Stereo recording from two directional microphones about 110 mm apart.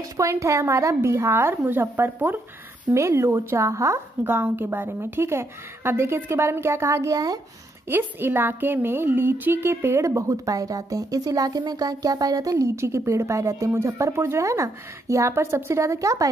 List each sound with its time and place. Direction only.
0.2 s a woman's voice: 25° right (ahead or behind)
7.9 s a woman's voice: 20° right (ahead or behind)